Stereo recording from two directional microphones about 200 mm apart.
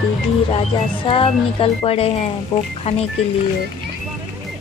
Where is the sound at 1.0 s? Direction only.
25° left (ahead or behind).